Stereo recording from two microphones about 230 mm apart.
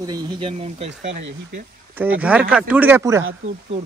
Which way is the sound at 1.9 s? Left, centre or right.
Centre.